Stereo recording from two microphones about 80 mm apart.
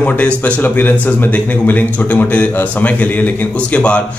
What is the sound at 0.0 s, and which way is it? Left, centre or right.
Speech, centre.